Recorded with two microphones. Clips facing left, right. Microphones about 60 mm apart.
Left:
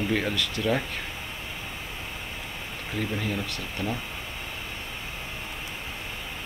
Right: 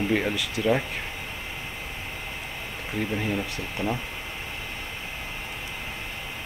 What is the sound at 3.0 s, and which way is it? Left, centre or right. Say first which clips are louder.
Speech: right 2 dB; right.